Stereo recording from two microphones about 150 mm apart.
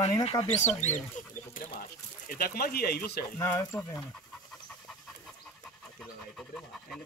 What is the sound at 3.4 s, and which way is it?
Speech, 20° left (ahead or behind).